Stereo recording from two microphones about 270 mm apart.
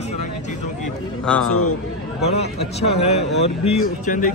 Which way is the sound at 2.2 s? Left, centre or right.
Left.